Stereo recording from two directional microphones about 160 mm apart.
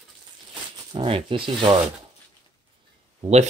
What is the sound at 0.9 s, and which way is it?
Speech, 35° right (ahead or behind).